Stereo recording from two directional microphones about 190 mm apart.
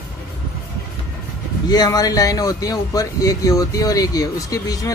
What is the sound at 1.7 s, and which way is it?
Speech, 20° left (ahead or behind).